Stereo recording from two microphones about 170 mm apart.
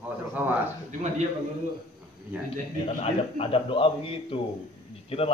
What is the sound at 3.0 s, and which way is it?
A man's voice, 35° left (ahead or behind).